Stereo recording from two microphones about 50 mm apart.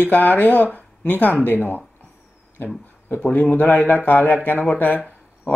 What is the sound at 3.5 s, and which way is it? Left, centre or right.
Speech, left.